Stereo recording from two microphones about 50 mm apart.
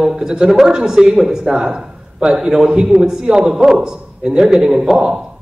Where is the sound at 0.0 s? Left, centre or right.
Centre.